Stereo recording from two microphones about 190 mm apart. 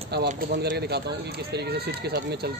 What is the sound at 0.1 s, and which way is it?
Speech, 60° right (ahead or behind).